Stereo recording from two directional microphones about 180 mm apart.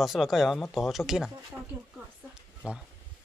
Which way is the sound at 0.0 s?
Centre (ahead or behind).